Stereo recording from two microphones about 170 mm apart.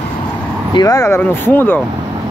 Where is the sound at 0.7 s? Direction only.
20° left (ahead or behind).